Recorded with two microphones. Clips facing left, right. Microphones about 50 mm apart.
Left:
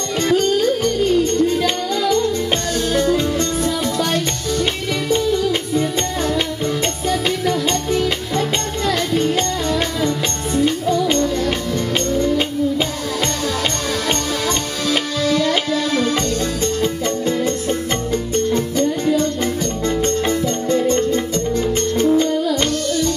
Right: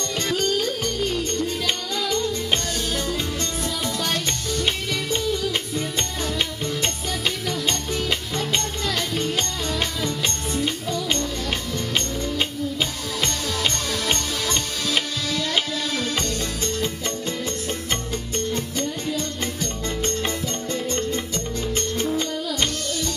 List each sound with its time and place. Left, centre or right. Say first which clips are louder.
7.1 s music: left 8 dB; left
9.1 s music: left 8 dB; centre
9.7 s music: left 7 dB; left
15.2 s tabla: left 7 dB; left
21.7 s music: left 7 dB; centre